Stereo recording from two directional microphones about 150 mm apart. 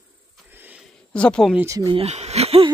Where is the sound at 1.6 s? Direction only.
25° right (ahead or behind).